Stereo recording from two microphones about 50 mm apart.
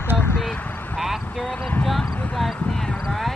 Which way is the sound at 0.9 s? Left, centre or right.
Centre.